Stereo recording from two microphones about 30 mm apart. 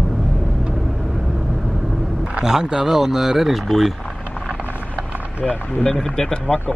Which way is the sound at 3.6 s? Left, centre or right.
Centre.